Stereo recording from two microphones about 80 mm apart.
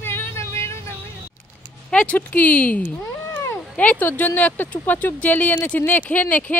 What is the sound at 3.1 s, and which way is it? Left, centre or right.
Cat, left.